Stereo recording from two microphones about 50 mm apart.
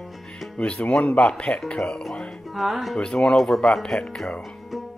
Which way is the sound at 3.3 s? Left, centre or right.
Centre.